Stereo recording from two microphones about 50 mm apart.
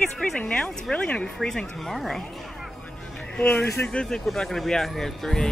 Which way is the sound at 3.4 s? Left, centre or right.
Left.